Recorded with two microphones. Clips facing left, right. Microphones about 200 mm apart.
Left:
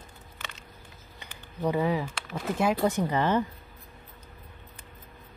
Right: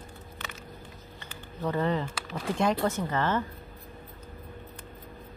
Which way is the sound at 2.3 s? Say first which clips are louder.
Left 1 dB; 5° left (ahead or behind).